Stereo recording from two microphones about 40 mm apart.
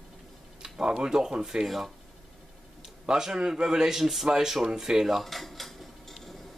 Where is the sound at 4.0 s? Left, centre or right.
Centre.